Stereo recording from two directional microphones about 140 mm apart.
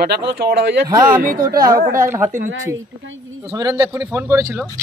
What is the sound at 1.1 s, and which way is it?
Speech, 85° right.